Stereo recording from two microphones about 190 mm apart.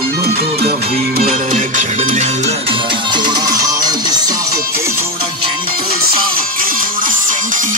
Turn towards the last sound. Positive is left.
turn(degrees=-45)  # may be behind; listen again after turning